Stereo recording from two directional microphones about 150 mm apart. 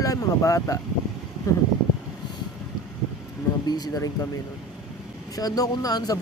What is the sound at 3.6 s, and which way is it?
Speech, 25° left (ahead or behind).